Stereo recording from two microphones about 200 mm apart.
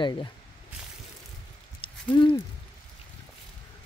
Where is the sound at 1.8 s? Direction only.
25° left (ahead or behind).